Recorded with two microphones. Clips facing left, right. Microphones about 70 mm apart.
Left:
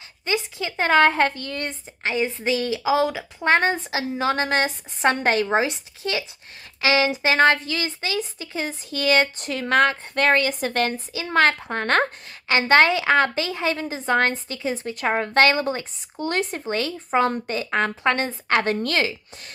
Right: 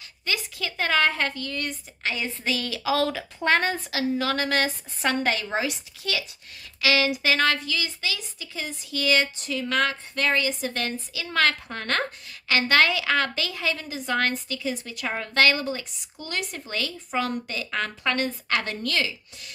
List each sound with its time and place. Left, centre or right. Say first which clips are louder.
0.2 s a woman's voice: left 4 dB; left
3.4 s a woman's voice: left 3 dB; left
11.1 s a woman's voice: left 5 dB; left
12.5 s a woman's voice: left 4 dB; left